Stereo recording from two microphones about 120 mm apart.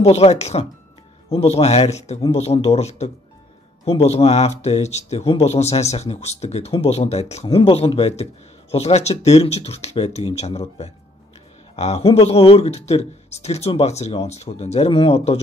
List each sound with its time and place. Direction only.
0.0 s speech: 60° left (ahead or behind)
7.4 s a man's voice: 50° left (ahead or behind)
14.9 s a man's voice: 50° left (ahead or behind)